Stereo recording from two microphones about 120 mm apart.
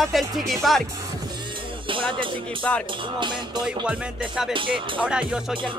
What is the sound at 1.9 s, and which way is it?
Music, 45° right (ahead or behind).